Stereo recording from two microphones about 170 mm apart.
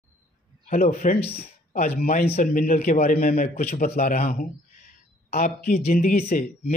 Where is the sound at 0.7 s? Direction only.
50° left (ahead or behind).